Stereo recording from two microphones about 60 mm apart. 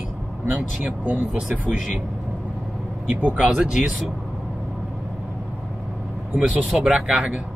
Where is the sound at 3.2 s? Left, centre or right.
Centre.